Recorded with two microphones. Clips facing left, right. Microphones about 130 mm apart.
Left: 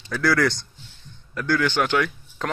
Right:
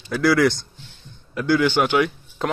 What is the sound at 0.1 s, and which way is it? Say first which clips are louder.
A man's voice: right 4 dB; 10° right (ahead or behind).